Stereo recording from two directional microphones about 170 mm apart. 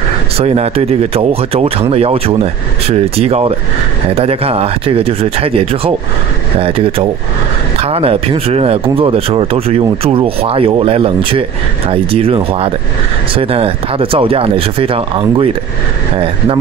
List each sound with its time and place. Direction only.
0.4 s speech: 35° right (ahead or behind)